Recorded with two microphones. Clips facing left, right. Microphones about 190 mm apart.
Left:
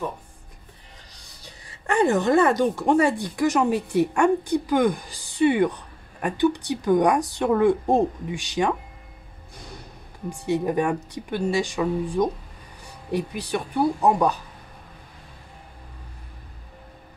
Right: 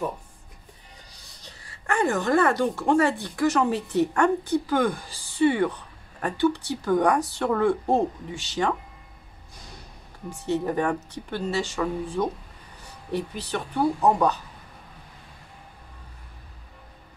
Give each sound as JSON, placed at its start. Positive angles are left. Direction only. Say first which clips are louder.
{"t": 1.4, "sound": "a woman's voice", "louder": "left 3 dB", "side_deg": 20}
{"t": 10.3, "sound": "a woman's voice", "louder": "left 2 dB", "side_deg": 15}